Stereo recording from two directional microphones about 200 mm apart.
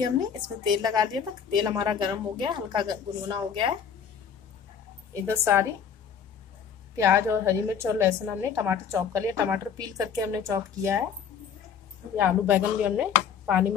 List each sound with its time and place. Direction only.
0.7 s a woman's voice: 20° right (ahead or behind)
5.3 s a woman's voice: 10° right (ahead or behind)
7.0 s a woman's voice: 15° right (ahead or behind)
12.2 s a woman's voice: 10° right (ahead or behind)